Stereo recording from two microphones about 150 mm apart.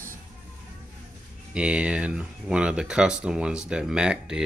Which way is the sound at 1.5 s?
5° right (ahead or behind).